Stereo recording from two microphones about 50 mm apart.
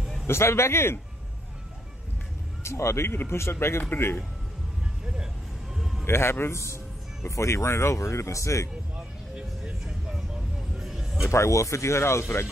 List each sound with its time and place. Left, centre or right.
0.3 s a man's voice: left
2.6 s a man's voice: left
5.0 s speech: centre
6.0 s a man's voice: left
7.2 s speech: left
9.3 s music: centre
10.8 s a sound: centre
11.2 s speech: left